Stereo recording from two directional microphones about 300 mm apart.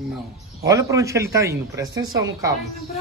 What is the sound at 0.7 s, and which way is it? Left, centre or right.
Speech, centre.